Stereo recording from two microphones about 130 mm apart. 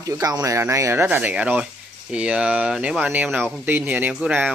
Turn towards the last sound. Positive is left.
turn(degrees=-10)  # may be behind; listen again after turning